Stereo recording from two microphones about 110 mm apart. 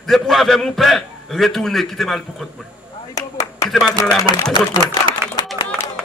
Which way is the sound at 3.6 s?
5° left (ahead or behind).